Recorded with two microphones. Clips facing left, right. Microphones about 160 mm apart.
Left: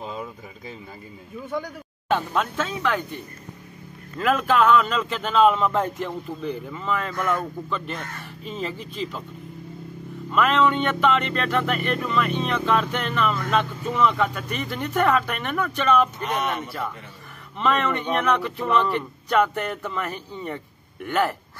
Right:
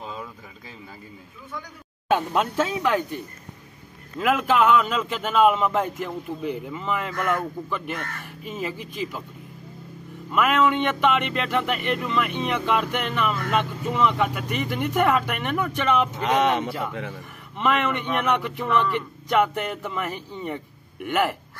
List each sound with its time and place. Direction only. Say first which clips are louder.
0.0 s a sound: left 3 dB; 10° left (ahead or behind)
2.0 s speech: right 2 dB; 10° right (ahead or behind)
4.2 s speech: even; 10° right (ahead or behind)
10.3 s speech: even; 10° right (ahead or behind)
16.2 s speech: right 5 dB; 90° right
17.6 s speech: even; 15° right (ahead or behind)